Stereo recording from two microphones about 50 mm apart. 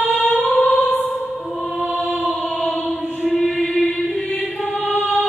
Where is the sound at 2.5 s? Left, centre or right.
Left.